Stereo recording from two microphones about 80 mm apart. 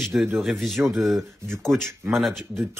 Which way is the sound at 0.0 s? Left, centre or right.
Centre.